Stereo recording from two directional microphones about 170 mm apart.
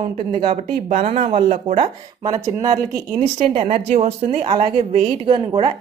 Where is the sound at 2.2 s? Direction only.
20° right (ahead or behind).